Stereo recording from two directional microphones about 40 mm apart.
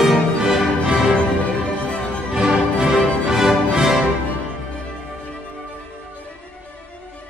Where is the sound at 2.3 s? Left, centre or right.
Centre.